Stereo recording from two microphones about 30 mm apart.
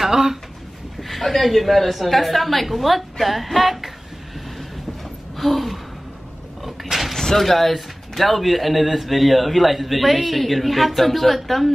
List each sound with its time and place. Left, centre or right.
0.0 s speech: centre
1.0 s a man's voice: centre
5.3 s a sound: centre
7.3 s a man's voice: centre